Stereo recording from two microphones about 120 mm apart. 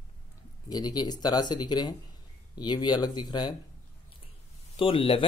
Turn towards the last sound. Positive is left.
turn(degrees=45)  # may be behind; listen again after turning